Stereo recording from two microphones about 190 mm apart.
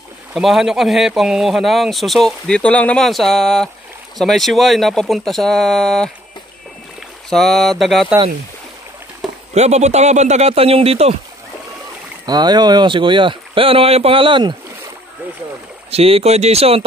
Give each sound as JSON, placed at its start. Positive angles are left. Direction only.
{"t": 0.3, "sound": "speech", "side_deg": 0}
{"t": 7.2, "sound": "speech", "side_deg": 0}
{"t": 9.5, "sound": "a man's voice", "side_deg": -35}
{"t": 12.3, "sound": "speech", "side_deg": -20}
{"t": 15.9, "sound": "a man's voice", "side_deg": -30}